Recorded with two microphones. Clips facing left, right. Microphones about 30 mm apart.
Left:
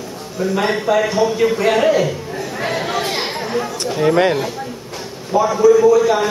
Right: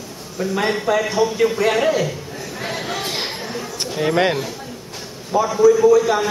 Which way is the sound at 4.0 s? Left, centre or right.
Centre.